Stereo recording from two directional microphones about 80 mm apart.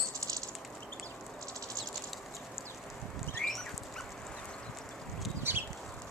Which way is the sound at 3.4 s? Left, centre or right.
Centre.